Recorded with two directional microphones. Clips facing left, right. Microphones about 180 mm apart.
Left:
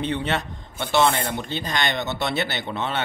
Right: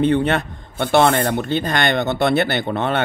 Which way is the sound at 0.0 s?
55° right (ahead or behind).